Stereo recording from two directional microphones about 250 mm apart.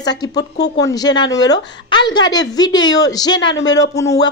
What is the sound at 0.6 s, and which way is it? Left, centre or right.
Speech, left.